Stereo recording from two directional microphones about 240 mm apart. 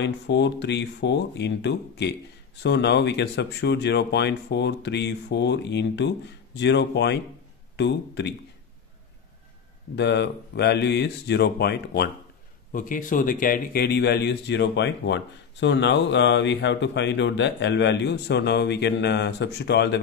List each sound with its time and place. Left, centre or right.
0.0 s speech: left
9.9 s a man's voice: left